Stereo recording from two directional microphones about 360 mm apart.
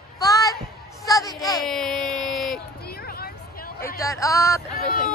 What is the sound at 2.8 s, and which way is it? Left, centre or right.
Hubbub, left.